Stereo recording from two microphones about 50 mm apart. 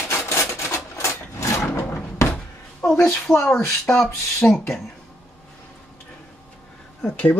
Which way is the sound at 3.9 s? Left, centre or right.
Centre.